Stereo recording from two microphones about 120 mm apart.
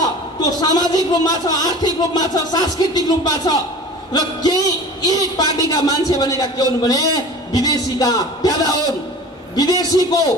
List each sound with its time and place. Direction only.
0.4 s a woman's voice: 35° left (ahead or behind)